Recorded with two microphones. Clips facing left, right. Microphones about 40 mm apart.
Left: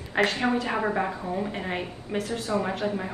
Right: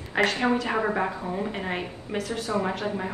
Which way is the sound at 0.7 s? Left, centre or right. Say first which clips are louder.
Right 1 dB; centre.